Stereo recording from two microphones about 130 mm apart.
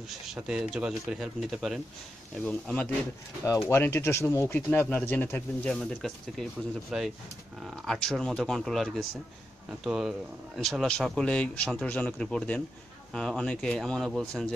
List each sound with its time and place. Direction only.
0.1 s speech: 5° right (ahead or behind)
2.4 s speech: 10° left (ahead or behind)